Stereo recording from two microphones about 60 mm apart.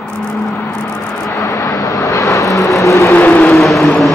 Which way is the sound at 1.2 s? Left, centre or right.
Left.